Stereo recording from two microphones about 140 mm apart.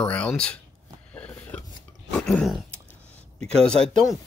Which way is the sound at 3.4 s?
5° left (ahead or behind).